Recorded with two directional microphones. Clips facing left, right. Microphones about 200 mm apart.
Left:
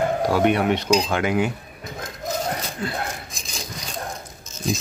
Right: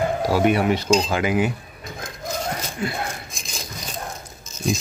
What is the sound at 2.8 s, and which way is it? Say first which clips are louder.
Speech: right 3 dB; 10° right (ahead or behind).